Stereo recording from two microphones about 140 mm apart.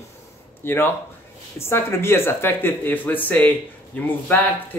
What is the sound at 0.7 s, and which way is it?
Speech, 15° left (ahead or behind).